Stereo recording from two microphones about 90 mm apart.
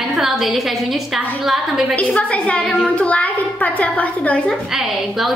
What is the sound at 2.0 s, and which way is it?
A child's voice, 15° left (ahead or behind).